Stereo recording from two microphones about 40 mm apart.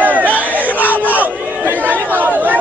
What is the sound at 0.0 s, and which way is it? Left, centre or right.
Battle cry, right.